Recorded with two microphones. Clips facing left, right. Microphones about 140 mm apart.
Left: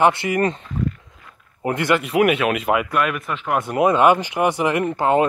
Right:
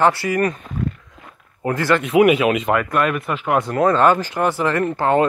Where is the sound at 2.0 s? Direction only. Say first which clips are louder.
Right 4 dB; centre (ahead or behind).